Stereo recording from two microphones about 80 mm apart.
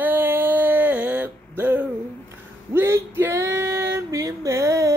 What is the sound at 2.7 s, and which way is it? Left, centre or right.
Female singing, right.